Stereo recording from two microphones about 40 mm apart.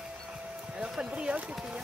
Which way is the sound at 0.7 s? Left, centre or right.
Centre.